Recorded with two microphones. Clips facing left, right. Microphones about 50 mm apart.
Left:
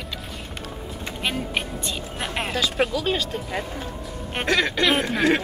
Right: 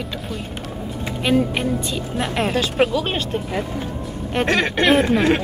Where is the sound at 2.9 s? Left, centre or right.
Right.